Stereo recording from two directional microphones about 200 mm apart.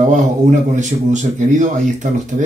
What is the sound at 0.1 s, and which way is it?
A man's voice, 40° right (ahead or behind).